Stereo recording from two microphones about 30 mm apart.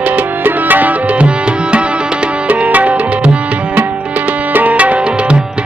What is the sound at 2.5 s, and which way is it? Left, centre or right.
Tabla, right.